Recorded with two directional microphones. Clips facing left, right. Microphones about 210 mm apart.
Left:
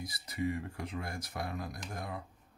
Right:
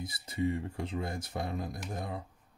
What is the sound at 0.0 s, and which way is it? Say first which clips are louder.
Speech: right 3 dB; 25° right (ahead or behind).